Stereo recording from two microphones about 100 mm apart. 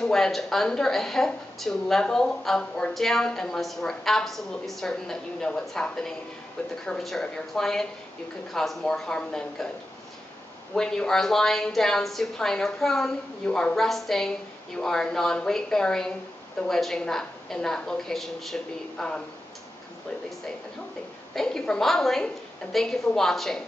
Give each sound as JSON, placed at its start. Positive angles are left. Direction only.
{"t": 0.0, "sound": "a woman's voice", "side_deg": 5}
{"t": 10.7, "sound": "a woman's voice", "side_deg": 5}
{"t": 21.4, "sound": "a woman's voice", "side_deg": 5}